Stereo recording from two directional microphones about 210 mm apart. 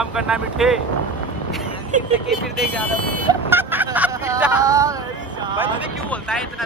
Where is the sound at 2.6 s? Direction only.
5° left (ahead or behind).